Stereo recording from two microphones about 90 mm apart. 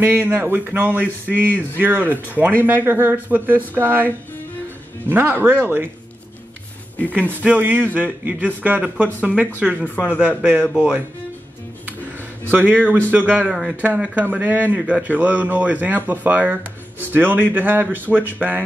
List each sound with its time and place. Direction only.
0.0 s speech: 25° right (ahead or behind)
5.1 s speech: 20° right (ahead or behind)
7.2 s a man's voice: 20° right (ahead or behind)
9.8 s speech: 15° left (ahead or behind)
10.0 s a man's voice: 15° right (ahead or behind)
12.4 s a man's voice: 20° right (ahead or behind)